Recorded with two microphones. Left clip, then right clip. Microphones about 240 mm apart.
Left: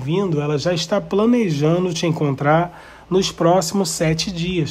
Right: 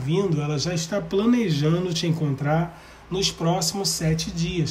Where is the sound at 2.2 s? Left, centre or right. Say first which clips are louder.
Left 12 dB; left.